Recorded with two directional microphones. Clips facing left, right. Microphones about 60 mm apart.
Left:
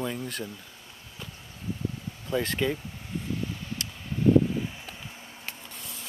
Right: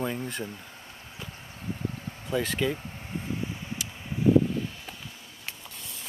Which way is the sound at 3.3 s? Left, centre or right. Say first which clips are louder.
Even; centre.